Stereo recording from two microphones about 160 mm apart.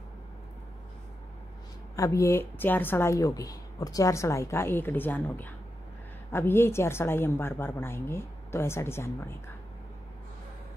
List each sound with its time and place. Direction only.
2.0 s speech: 20° left (ahead or behind)